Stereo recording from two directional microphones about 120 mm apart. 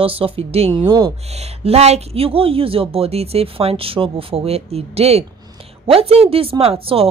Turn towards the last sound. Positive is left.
turn(degrees=-55)  # may be behind; listen again after turning